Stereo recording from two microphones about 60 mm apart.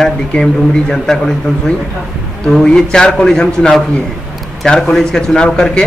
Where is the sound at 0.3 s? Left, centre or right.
Centre.